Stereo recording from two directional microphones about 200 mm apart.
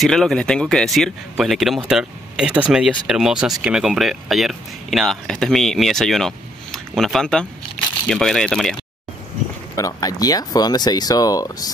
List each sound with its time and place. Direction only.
0.0 s speech: centre (ahead or behind)
9.8 s speech: 15° left (ahead or behind)